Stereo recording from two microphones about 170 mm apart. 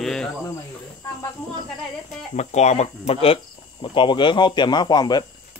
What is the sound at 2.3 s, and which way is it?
Speech, 40° left (ahead or behind).